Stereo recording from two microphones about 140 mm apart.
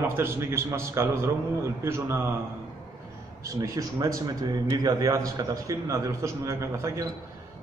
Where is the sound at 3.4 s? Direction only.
25° right (ahead or behind).